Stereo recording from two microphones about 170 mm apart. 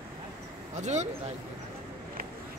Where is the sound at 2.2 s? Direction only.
60° right (ahead or behind).